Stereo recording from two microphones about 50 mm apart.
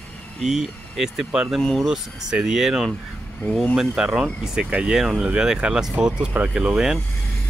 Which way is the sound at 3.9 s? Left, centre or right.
Centre.